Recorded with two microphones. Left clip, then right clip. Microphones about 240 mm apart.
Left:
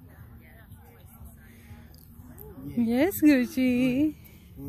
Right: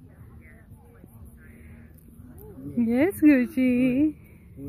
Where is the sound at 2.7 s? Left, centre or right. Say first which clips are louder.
Right 2 dB; centre.